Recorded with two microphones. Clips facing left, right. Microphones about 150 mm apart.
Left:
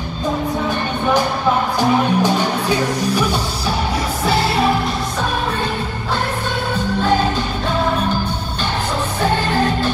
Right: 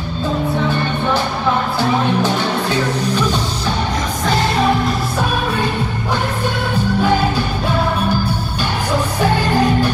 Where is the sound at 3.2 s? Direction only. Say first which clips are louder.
Right 1 dB; 10° left (ahead or behind).